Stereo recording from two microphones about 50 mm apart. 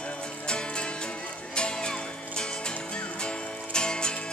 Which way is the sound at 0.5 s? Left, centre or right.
Centre.